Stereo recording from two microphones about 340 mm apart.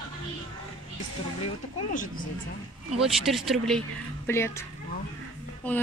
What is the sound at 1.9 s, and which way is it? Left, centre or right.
Speech, left.